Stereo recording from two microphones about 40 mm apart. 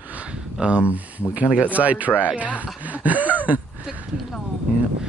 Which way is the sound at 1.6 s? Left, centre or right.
Right.